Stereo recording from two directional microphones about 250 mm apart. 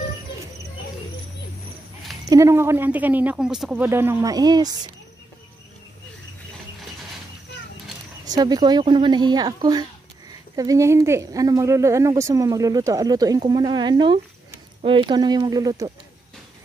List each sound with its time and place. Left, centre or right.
2.2 s speech: centre
8.3 s speech: centre